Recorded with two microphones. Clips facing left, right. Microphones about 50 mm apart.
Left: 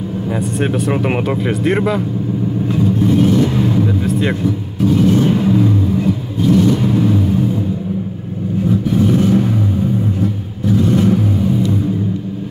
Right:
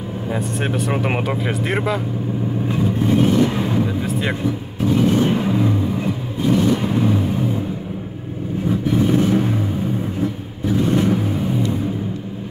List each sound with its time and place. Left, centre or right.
0.3 s speech: centre
2.7 s vehicle: right
4.0 s music: centre
4.8 s vehicle: right